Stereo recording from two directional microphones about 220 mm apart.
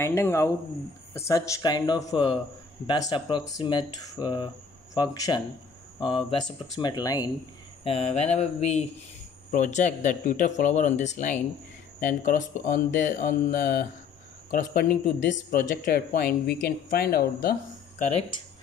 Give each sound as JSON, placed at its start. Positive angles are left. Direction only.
{"t": 0.0, "sound": "speech", "side_deg": 10}
{"t": 7.8, "sound": "speech", "side_deg": 30}